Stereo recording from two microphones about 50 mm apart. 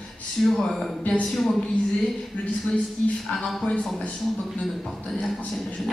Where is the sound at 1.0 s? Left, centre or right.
Left.